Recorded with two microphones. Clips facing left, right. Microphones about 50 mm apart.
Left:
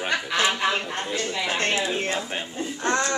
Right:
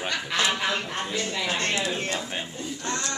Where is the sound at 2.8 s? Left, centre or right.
Left.